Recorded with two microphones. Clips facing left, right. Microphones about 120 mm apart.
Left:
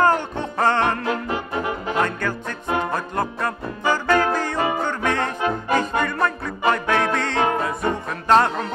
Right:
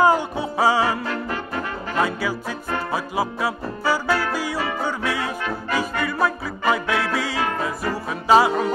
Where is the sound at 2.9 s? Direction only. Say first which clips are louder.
Even; 5° right (ahead or behind).